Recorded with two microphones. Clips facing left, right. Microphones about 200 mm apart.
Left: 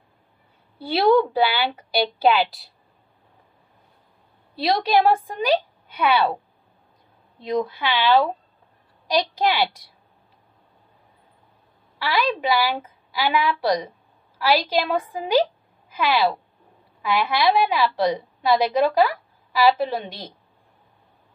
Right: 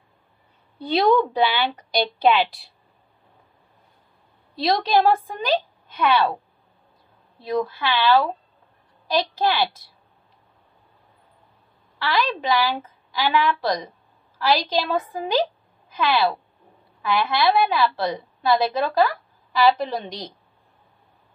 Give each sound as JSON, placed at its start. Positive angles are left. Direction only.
{"t": 0.7, "sound": "a woman's voice", "side_deg": 10}
{"t": 4.6, "sound": "a woman's voice", "side_deg": 10}
{"t": 7.4, "sound": "a woman's voice", "side_deg": 15}
{"t": 12.0, "sound": "a woman's voice", "side_deg": 10}